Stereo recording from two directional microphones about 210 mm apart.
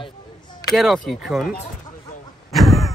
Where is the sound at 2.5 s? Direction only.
Centre (ahead or behind).